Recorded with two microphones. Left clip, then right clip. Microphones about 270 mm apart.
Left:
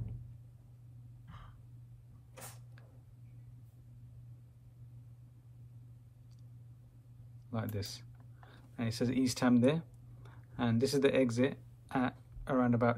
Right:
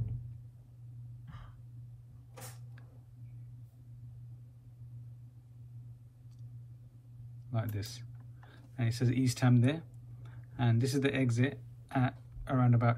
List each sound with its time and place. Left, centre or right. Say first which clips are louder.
7.5 s speech: left 1 dB; left